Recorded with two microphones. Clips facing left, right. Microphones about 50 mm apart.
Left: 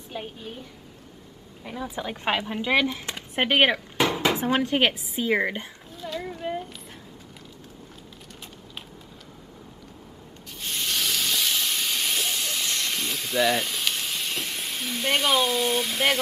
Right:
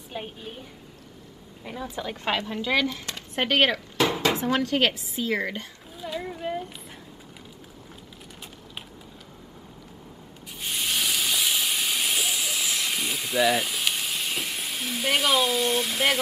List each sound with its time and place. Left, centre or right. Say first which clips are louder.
0.1 s a woman's voice: even; centre
1.9 s speech: left 1 dB; centre
5.9 s a sound: right 1 dB; centre
10.6 s hiss: right 1 dB; centre